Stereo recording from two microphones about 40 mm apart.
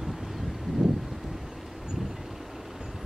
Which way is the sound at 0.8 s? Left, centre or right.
Centre.